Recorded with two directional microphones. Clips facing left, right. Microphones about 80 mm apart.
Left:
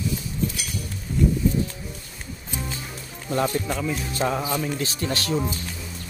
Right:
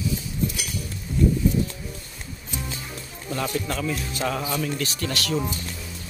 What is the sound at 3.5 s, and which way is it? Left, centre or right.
Speech, centre.